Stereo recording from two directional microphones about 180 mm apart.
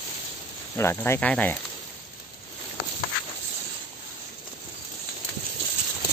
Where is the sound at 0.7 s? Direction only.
15° left (ahead or behind).